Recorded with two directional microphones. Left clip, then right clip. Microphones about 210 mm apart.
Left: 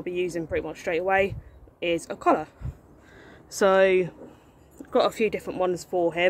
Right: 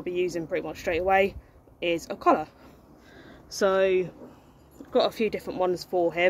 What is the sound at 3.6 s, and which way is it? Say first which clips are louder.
Speech: left 3 dB; 25° left (ahead or behind).